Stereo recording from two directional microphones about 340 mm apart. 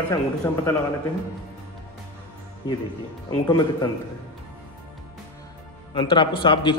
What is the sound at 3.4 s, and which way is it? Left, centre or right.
Speech, centre.